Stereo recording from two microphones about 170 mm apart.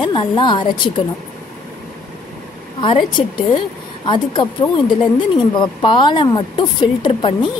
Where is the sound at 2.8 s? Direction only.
30° left (ahead or behind).